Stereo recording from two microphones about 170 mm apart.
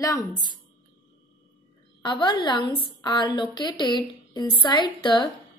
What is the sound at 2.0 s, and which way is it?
A woman's voice, 25° left (ahead or behind).